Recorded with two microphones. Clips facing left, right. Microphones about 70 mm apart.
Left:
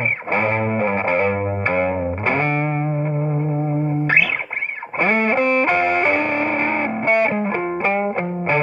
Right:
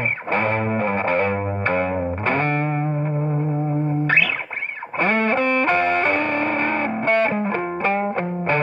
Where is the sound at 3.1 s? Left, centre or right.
Centre.